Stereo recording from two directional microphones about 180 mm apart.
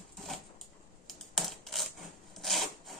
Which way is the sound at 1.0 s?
Centre (ahead or behind).